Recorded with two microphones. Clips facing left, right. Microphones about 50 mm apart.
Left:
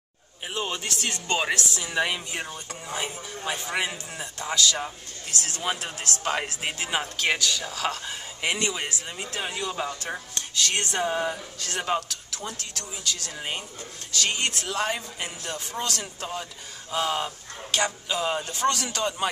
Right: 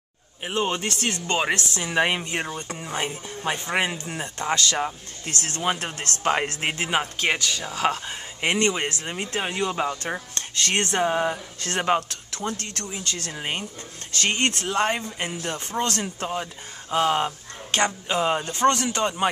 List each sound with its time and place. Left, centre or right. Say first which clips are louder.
0.6 s speech: right 5 dB; right
6.9 s speech: right 1 dB; right
7.3 s speech: right 1 dB; right
8.5 s speech: right 6 dB; right
9.1 s speech: right 4 dB; right
10.5 s speech: right 3 dB; right
11.0 s speech: right 3 dB; centre
11.6 s speech: right 5 dB; right
12.4 s speech: right 7 dB; right
13.3 s speech: right 3 dB; right
14.1 s speech: right 3 dB; right
17.6 s speech: right 3 dB; right
18.2 s speech: right 5 dB; right